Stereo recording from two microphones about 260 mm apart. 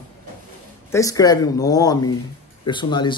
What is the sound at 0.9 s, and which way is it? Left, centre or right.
Speech, centre.